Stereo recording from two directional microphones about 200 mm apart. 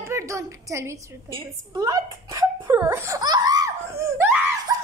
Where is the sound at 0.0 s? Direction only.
15° right (ahead or behind).